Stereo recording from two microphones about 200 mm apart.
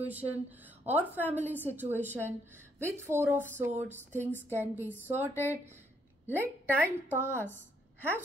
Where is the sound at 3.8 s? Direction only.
35° right (ahead or behind).